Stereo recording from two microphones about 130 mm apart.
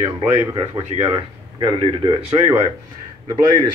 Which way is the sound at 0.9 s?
40° left (ahead or behind).